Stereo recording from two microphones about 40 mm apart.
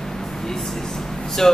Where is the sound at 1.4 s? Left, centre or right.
Centre.